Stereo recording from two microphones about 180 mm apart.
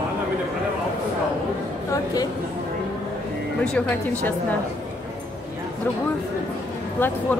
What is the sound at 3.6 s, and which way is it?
Speech, 5° left (ahead or behind).